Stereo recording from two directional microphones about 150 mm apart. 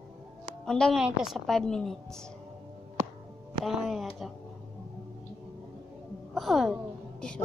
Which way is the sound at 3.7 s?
Centre (ahead or behind).